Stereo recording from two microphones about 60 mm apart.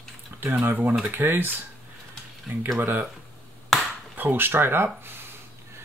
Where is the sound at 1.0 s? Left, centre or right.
Right.